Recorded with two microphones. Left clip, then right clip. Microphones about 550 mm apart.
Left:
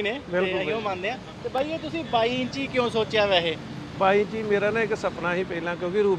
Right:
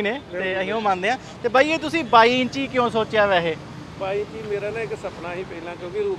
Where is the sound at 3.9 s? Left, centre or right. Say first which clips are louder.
Left 5 dB; left.